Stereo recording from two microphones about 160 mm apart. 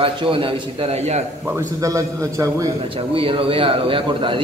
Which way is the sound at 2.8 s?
35° right (ahead or behind).